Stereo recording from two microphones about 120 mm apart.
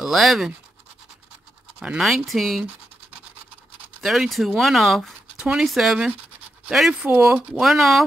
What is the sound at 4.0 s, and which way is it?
Speech, centre (ahead or behind).